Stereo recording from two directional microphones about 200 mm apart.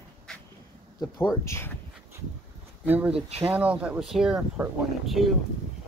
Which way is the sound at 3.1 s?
30° right (ahead or behind).